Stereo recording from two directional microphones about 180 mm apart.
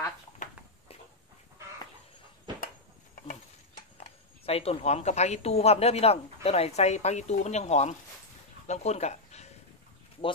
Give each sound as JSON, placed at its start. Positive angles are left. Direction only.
{"t": 3.3, "sound": "speech", "side_deg": 45}
{"t": 8.6, "sound": "dog", "side_deg": 40}